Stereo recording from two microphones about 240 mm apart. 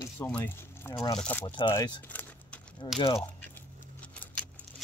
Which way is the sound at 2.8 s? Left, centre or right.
Left.